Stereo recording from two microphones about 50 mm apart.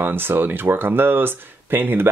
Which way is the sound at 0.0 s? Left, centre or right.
Right.